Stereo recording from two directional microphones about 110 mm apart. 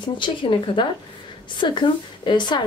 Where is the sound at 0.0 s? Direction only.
50° left (ahead or behind).